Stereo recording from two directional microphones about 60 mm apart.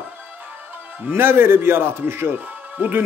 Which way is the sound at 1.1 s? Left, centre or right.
Right.